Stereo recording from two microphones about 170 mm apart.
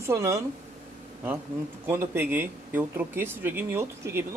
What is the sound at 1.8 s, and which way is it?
Speech, 10° right (ahead or behind).